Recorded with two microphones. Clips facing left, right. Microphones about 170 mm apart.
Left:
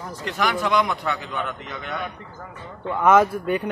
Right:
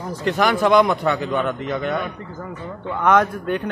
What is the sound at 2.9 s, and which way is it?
Speech, 5° left (ahead or behind).